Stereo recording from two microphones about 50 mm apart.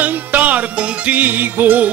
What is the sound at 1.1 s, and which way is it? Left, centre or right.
Music, right.